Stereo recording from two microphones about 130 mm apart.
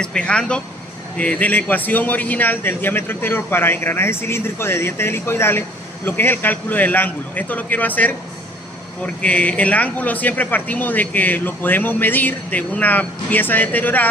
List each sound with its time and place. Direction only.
0.0 s speech: 10° left (ahead or behind)